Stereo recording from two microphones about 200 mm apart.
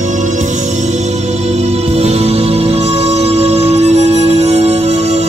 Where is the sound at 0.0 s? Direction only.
40° right (ahead or behind).